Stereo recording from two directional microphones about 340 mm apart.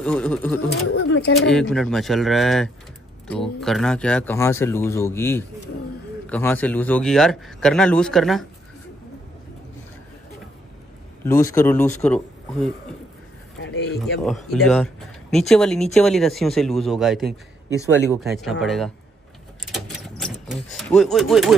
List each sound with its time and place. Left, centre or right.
0.0 s a man's voice: centre
0.8 s speech: left
1.5 s a man's voice: centre
11.2 s speech: centre
13.6 s speech: left
14.2 s a man's voice: centre
19.7 s a sound: centre